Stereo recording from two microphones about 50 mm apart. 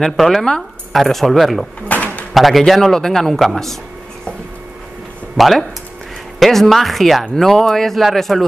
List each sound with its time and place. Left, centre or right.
0.0 s speech: centre
1.9 s bird: left
2.3 s a man's voice: centre
5.4 s speech: centre